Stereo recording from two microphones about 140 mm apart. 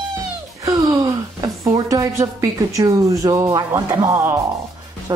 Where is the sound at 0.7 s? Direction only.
25° right (ahead or behind).